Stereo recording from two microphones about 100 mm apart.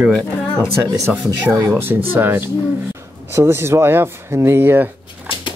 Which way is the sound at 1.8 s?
20° right (ahead or behind).